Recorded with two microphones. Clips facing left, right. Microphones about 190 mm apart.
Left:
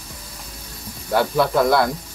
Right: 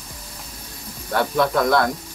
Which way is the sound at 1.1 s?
5° left (ahead or behind).